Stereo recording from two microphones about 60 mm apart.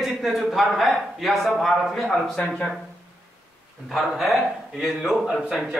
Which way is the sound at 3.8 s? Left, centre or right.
Centre.